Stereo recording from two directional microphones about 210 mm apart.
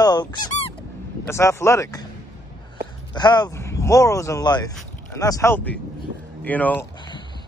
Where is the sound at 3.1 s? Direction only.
20° left (ahead or behind).